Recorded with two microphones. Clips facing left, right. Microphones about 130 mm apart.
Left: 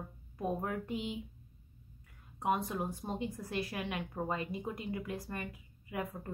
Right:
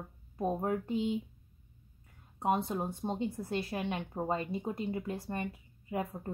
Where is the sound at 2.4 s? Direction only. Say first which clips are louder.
Right 2 dB; 25° right (ahead or behind).